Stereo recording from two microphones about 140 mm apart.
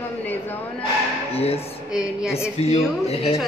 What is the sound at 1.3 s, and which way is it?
Speech, 45° left (ahead or behind).